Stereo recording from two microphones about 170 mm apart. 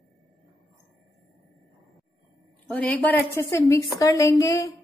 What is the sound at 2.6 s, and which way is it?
A woman's voice, 10° left (ahead or behind).